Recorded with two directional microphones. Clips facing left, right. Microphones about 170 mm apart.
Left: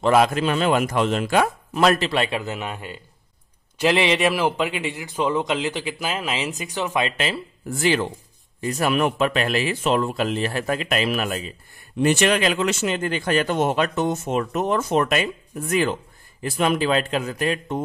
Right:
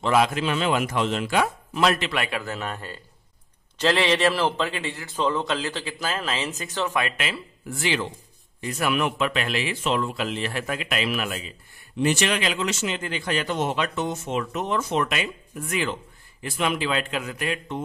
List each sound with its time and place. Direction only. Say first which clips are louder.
0.0 s a man's voice: left 4 dB; 45° left (ahead or behind); by 7.3 s 30° left (ahead or behind)
7.8 s a man's voice: left 6 dB; 45° left (ahead or behind)
12.0 s a man's voice: left 4 dB; 50° left (ahead or behind)